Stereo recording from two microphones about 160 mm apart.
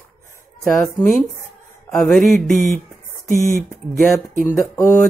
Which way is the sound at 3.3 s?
60° right (ahead or behind).